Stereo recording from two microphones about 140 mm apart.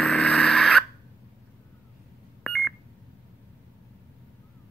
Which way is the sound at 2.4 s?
Centre (ahead or behind).